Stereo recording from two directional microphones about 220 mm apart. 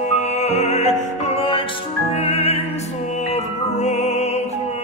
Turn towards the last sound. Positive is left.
turn(degrees=30)  # may be behind; listen again after turning